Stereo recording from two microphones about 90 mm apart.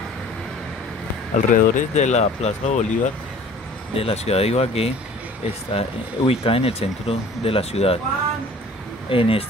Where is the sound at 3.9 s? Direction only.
90° left.